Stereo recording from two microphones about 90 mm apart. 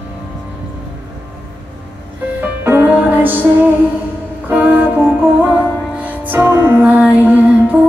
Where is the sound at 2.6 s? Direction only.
25° right (ahead or behind).